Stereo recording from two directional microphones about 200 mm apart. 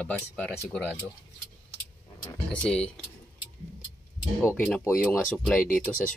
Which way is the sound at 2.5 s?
5° left (ahead or behind).